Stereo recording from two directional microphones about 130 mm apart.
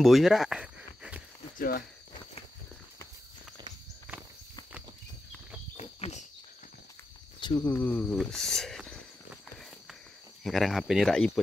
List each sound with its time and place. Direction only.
0.0 s a sound: centre (ahead or behind)
5.8 s cricket: 55° left (ahead or behind)
7.3 s cricket: 35° left (ahead or behind)
7.7 s speech: 15° left (ahead or behind)
8.2 s speech: 5° left (ahead or behind)
10.4 s speech: centre (ahead or behind)